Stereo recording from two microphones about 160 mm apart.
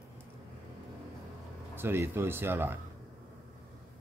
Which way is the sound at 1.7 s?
15° right (ahead or behind).